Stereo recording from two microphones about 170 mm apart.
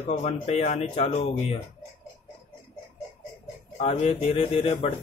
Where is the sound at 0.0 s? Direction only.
40° left (ahead or behind).